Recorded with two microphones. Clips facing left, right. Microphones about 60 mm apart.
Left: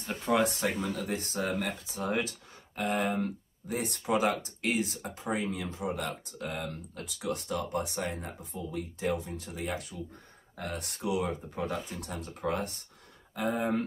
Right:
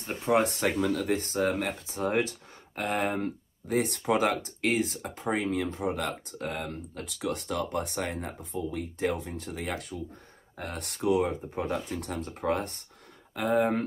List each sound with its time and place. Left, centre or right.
0.3 s speech: right
0.7 s speech: right
11.1 s speech: right
13.3 s speech: right